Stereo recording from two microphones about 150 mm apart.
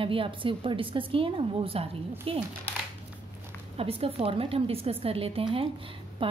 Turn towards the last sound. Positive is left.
turn(degrees=-35)  # may be behind; listen again after turning